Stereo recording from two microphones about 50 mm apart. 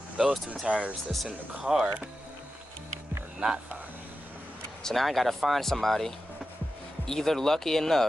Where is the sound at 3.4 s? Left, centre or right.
Centre.